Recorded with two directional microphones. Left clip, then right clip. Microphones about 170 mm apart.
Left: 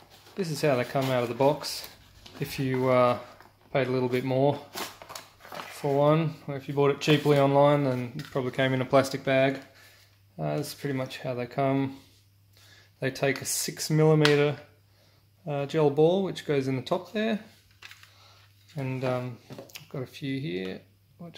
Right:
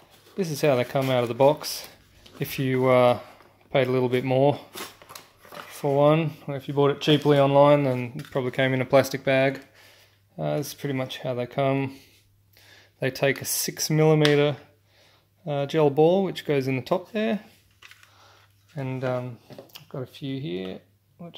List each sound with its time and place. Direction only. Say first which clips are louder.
0.4 s speech: right 4 dB; 50° right (ahead or behind)
4.7 s scissors: left 2 dB; 5° right (ahead or behind)
5.7 s speech: right 3 dB; 50° right (ahead or behind)
13.0 s speech: right 4 dB; 45° right (ahead or behind)
18.8 s speech: right 2 dB; 35° right (ahead or behind)